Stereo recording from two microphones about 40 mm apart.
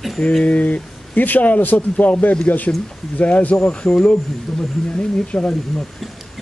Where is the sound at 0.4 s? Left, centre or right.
Left.